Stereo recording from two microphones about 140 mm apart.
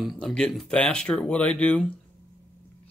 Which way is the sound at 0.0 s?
Centre (ahead or behind).